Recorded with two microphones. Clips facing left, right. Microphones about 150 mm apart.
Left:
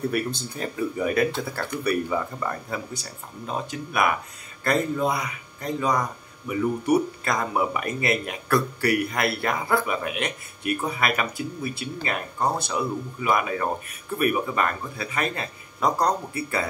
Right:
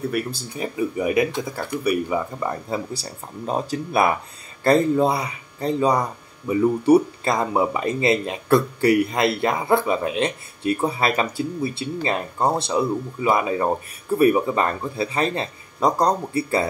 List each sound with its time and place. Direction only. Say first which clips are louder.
0.0 s speech: right 1 dB; 5° right (ahead or behind)
2.7 s speech: right 5 dB; 35° right (ahead or behind)